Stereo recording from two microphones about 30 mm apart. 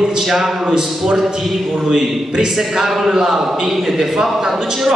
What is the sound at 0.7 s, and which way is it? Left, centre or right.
A man's voice, right.